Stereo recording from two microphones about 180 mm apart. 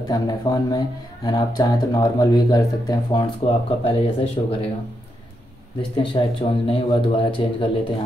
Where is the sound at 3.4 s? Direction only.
35° left (ahead or behind).